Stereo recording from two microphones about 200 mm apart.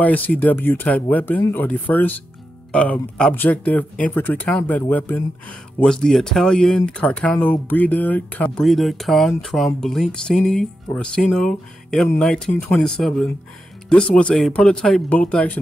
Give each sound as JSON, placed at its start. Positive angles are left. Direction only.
{"t": 0.0, "sound": "speech", "side_deg": 10}